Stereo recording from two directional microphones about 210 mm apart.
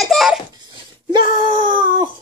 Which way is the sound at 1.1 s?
20° right (ahead or behind).